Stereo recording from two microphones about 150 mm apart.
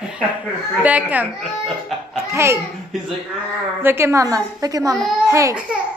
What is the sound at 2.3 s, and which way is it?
Speech, 20° right (ahead or behind).